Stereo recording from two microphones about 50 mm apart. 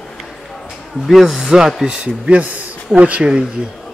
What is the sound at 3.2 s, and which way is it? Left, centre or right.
Speech, centre.